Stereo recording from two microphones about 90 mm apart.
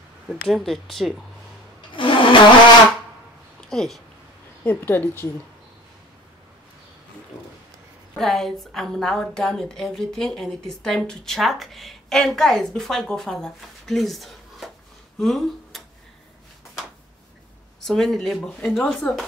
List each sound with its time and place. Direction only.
0.5 s a woman's voice: 5° left (ahead or behind)
2.0 s a sound: 65° left (ahead or behind)
3.6 s speech: 5° left (ahead or behind)
4.6 s speech: 25° left (ahead or behind)
8.2 s a woman's voice: 5° left (ahead or behind)
17.7 s a woman's voice: 5° left (ahead or behind)